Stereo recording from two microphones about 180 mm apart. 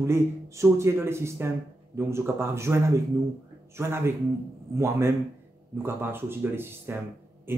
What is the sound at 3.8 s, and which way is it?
Speech, 15° right (ahead or behind).